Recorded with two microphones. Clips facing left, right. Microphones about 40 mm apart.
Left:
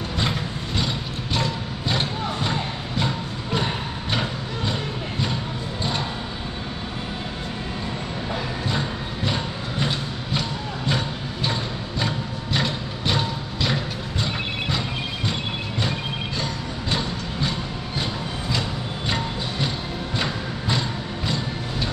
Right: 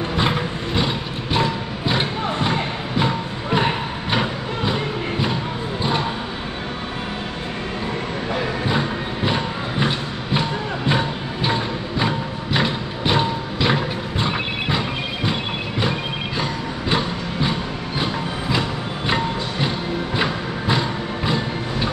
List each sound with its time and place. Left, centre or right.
0.1 s mechanisms: right
4.1 s a sound: centre
8.6 s music: right
15.8 s music: centre
16.9 s a sound: centre
20.2 s music: centre